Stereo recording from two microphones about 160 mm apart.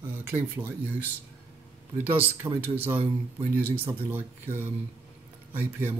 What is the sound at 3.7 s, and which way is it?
Speech, 10° right (ahead or behind).